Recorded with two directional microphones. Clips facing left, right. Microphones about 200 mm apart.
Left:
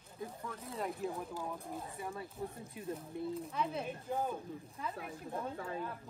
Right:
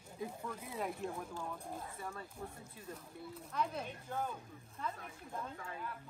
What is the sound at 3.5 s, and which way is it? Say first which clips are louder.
Speech: left 2 dB; 5° left (ahead or behind).